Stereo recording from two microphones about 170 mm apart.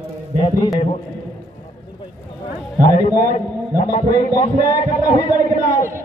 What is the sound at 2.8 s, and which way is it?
Speech, 25° left (ahead or behind).